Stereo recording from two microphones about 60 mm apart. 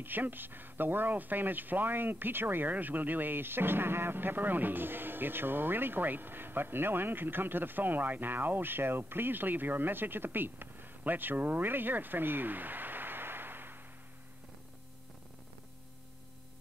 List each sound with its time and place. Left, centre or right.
0.0 s speech: right